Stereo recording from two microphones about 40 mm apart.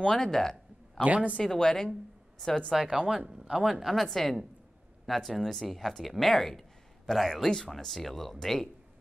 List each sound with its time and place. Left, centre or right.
0.0 s a sound: centre
1.0 s speech: right
1.4 s speech: centre
2.7 s speech: centre
3.1 s speech: centre
3.8 s speech: centre